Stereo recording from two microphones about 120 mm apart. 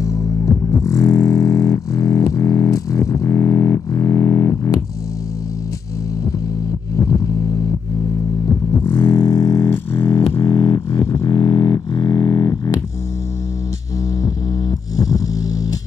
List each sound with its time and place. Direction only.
0.0 s music: 25° left (ahead or behind)
8.9 s a sound: 35° left (ahead or behind)
10.4 s music: 35° left (ahead or behind)
14.2 s music: 30° left (ahead or behind)